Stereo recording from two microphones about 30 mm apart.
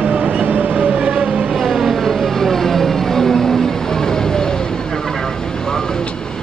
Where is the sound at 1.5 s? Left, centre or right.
Centre.